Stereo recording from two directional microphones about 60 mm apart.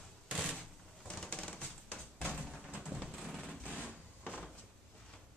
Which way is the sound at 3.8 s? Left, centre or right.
Left.